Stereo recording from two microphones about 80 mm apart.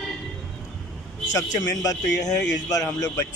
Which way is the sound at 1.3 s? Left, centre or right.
Left.